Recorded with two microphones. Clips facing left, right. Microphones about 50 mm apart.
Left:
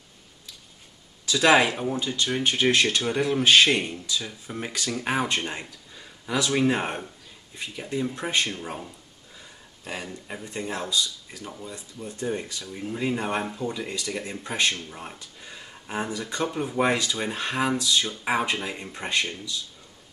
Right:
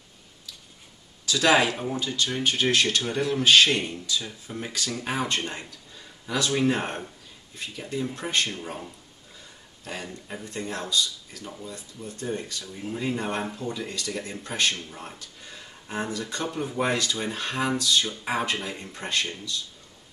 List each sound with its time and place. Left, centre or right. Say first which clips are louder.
1.2 s speech: left 2 dB; centre
10.2 s speech: left 1 dB; centre
16.7 s speech: left 2 dB; left
17.6 s speech: even; centre